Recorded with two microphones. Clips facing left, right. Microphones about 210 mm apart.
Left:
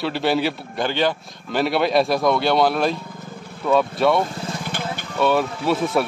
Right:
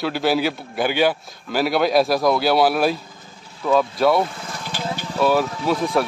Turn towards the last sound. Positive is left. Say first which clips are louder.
# even
turn(degrees=5)  # may be behind; listen again after turning